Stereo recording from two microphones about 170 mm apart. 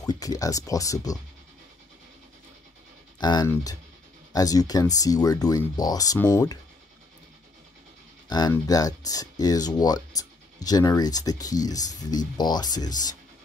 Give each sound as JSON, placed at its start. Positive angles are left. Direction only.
{"t": 0.0, "sound": "speech", "side_deg": 20}
{"t": 3.2, "sound": "speech", "side_deg": 25}
{"t": 8.3, "sound": "speech", "side_deg": 20}